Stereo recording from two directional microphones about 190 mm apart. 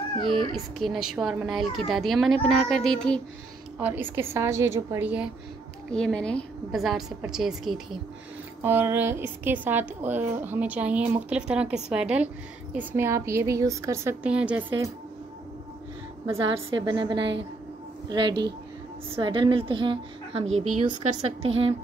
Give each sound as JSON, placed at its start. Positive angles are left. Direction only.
{"t": 0.5, "sound": "a woman's voice", "side_deg": 0}
{"t": 3.7, "sound": "a woman's voice", "side_deg": -10}
{"t": 5.9, "sound": "a woman's voice", "side_deg": 5}
{"t": 16.7, "sound": "a woman's voice", "side_deg": -25}
{"t": 17.2, "sound": "a woman's voice", "side_deg": -70}
{"t": 18.0, "sound": "a woman's voice", "side_deg": -25}
{"t": 21.4, "sound": "a woman's voice", "side_deg": -90}